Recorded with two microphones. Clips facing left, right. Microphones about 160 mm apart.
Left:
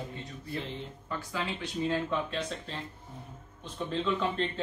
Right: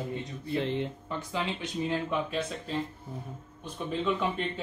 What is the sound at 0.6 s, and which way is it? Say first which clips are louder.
Speech: right 9 dB; 70° right (ahead or behind).